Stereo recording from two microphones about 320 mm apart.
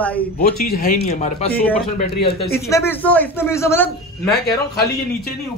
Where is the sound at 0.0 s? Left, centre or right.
Centre.